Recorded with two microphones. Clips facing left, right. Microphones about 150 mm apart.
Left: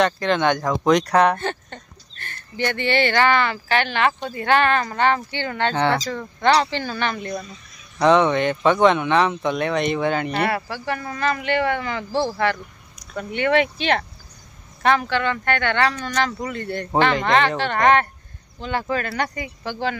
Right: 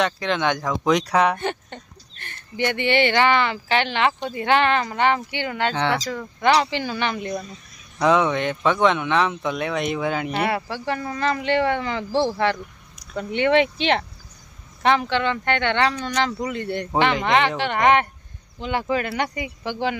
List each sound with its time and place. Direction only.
0.0 s speech: centre (ahead or behind)
1.4 s speech: 15° right (ahead or behind)
5.8 s speech: centre (ahead or behind)
8.0 s speech: 5° right (ahead or behind)
10.5 s speech: 20° right (ahead or behind)